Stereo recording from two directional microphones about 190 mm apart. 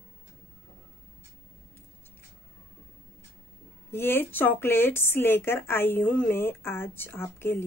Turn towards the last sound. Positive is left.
turn(degrees=10)  # may be behind; listen again after turning